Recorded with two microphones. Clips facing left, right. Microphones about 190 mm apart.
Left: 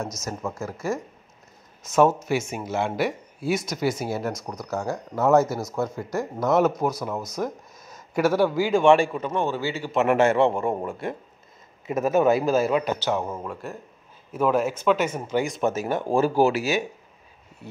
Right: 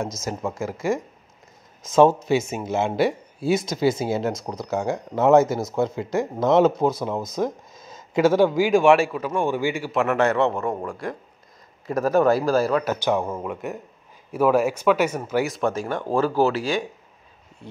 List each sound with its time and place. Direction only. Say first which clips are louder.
0.1 s speech: right 3 dB; 90° right
2.0 s a man's voice: right 3 dB; 25° right (ahead or behind)
10.1 s a man's voice: left 2 dB; 25° left (ahead or behind)
13.4 s a man's voice: right 4 dB; 15° right (ahead or behind); by 16.8 s 10° left (ahead or behind)